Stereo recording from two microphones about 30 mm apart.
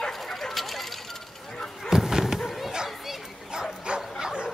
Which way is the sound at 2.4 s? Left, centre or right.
Centre.